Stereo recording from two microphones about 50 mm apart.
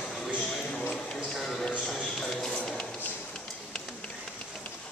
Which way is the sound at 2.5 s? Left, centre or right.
Left.